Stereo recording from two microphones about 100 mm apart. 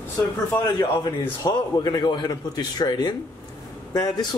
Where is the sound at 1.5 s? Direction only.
40° left (ahead or behind).